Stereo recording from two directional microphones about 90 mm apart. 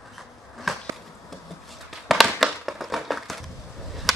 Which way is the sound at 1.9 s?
Centre (ahead or behind).